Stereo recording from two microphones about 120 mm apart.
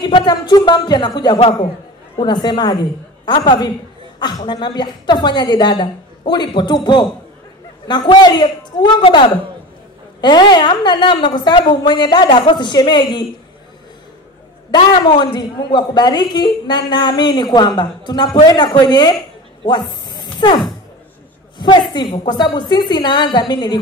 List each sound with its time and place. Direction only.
0.0 s a woman's voice: 35° left (ahead or behind)
14.7 s a woman's voice: 40° left (ahead or behind)
19.6 s a sound: 40° left (ahead or behind)
21.5 s a woman's voice: 35° left (ahead or behind)